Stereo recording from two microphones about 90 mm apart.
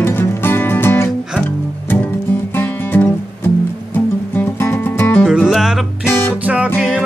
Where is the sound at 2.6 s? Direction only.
25° left (ahead or behind).